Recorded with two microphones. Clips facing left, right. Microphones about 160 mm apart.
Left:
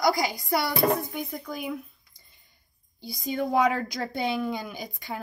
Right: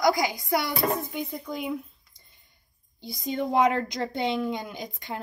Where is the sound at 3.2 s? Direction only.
25° right (ahead or behind).